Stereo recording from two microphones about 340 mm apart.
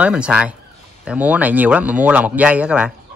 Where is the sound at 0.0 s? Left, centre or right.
Centre.